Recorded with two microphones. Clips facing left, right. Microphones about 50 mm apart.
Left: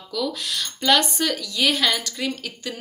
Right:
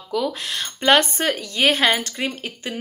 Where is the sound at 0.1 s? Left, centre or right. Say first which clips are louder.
Right 3 dB; right.